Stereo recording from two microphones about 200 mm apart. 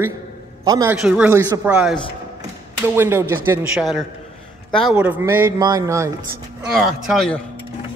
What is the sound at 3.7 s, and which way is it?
A man's voice, centre (ahead or behind).